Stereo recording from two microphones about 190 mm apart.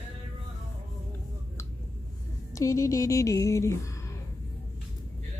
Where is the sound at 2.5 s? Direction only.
15° left (ahead or behind).